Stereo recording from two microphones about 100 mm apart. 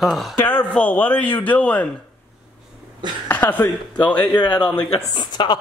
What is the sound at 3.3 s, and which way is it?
A man's voice, 20° left (ahead or behind).